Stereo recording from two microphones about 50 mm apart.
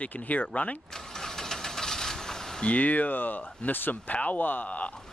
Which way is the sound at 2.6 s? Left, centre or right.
Left.